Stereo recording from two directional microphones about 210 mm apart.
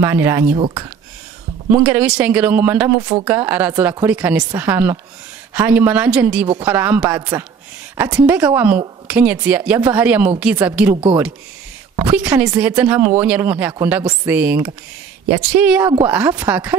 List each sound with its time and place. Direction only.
0.0 s speech: 10° right (ahead or behind)
0.6 s speech: 25° right (ahead or behind)
1.7 s speech: 5° right (ahead or behind)
12.1 s speech: 5° right (ahead or behind)